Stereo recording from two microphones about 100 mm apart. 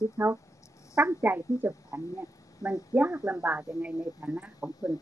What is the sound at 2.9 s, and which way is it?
Speech, 20° right (ahead or behind).